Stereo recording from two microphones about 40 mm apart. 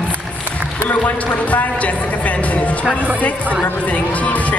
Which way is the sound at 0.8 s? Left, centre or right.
Left.